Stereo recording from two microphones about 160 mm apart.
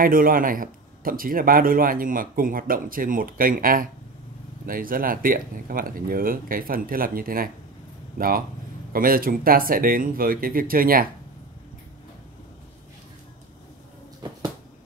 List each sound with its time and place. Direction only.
0.0 s speech: 60° right (ahead or behind)